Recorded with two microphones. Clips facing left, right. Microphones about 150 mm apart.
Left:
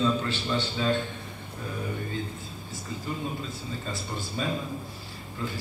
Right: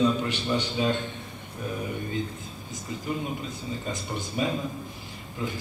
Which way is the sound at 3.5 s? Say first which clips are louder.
Right 2 dB; 20° right (ahead or behind).